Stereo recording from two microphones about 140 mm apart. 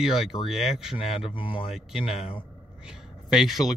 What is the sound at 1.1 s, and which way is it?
Speech, 35° left (ahead or behind).